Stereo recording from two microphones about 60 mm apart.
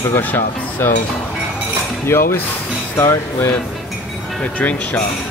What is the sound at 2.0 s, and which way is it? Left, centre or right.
Speech, left.